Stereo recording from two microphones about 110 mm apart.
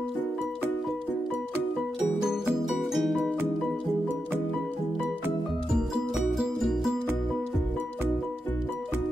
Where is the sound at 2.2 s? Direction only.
5° right (ahead or behind).